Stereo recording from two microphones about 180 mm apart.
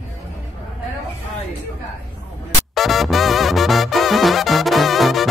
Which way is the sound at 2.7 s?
Centre (ahead or behind).